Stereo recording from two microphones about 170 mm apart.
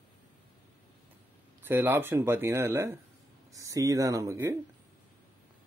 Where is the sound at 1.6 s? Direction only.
10° right (ahead or behind).